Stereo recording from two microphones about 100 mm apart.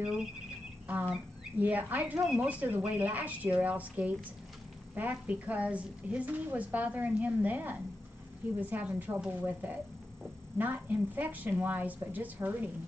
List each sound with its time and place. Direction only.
0.8 s a woman's voice: 15° right (ahead or behind)
2.1 s a woman's voice: 5° right (ahead or behind)